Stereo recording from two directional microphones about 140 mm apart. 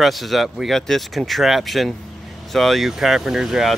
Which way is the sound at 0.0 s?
Centre (ahead or behind).